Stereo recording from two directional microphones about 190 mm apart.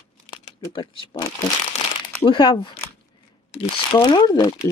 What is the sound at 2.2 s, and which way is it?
Speech, 25° left (ahead or behind).